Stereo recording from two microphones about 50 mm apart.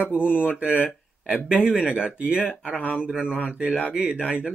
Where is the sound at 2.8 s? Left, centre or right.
Left.